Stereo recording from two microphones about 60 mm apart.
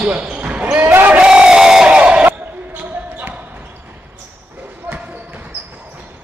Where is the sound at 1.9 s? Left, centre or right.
Centre.